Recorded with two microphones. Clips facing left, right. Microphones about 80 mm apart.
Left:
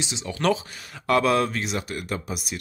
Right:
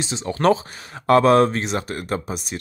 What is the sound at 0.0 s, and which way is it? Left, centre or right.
Speech, right.